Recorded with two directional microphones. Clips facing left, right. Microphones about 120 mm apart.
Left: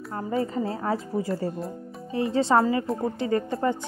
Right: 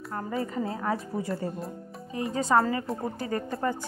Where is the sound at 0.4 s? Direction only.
30° left (ahead or behind).